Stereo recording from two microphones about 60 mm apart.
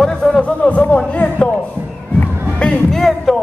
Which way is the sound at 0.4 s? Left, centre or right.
Left.